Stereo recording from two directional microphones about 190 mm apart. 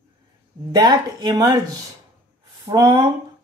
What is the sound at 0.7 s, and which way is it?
Speech, 20° right (ahead or behind).